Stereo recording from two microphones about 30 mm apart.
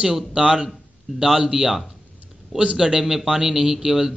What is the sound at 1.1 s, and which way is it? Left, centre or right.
Speech, centre.